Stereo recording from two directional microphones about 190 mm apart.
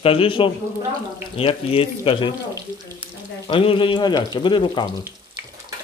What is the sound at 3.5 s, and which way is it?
Speech, 25° left (ahead or behind).